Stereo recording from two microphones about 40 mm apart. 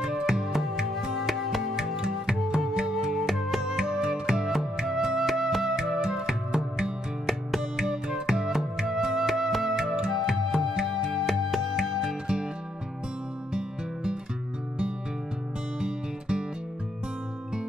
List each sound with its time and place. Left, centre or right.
0.0 s music: centre
1.8 s music: centre
7.2 s music: centre
7.8 s music: centre
11.1 s music: centre
13.5 s music: right
15.8 s music: centre